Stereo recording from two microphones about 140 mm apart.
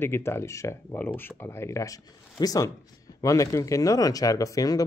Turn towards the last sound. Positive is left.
turn(degrees=25)  # may be behind; listen again after turning